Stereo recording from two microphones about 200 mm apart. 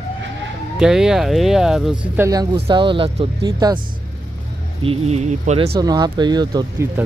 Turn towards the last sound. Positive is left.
turn(degrees=-20)  # may be behind; listen again after turning